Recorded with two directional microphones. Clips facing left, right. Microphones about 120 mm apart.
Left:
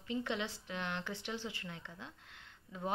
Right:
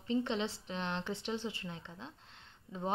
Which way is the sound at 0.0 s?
25° right (ahead or behind).